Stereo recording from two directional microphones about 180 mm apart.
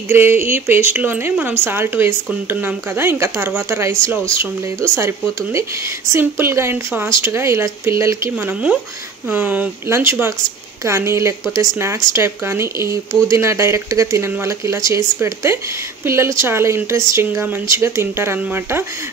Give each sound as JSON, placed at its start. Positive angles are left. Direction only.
{"t": 0.1, "sound": "speech", "side_deg": -10}
{"t": 9.3, "sound": "speech", "side_deg": -10}